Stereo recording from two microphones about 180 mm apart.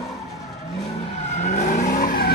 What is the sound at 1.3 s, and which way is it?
Vehicle, 40° left (ahead or behind).